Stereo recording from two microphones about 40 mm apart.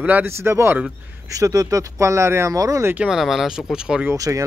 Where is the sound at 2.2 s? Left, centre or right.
Right.